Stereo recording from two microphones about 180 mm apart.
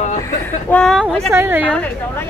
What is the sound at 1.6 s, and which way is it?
Speech, 10° left (ahead or behind).